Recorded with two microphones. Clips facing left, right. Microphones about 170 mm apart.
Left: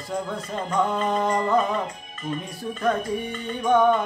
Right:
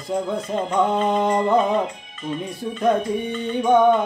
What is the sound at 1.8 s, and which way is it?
Music, 45° left (ahead or behind).